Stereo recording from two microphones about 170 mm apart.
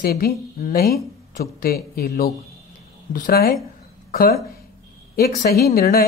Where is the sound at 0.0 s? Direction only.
65° left (ahead or behind).